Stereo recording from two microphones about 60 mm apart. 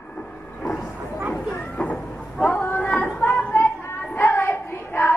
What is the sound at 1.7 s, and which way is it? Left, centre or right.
Train, left.